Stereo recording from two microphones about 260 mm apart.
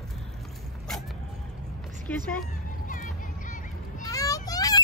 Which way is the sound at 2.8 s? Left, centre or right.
Left.